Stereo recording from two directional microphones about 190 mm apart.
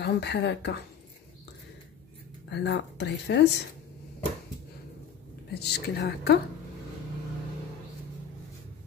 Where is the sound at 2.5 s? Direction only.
65° left (ahead or behind).